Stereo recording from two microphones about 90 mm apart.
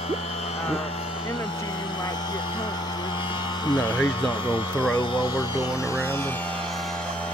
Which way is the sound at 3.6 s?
60° left (ahead or behind).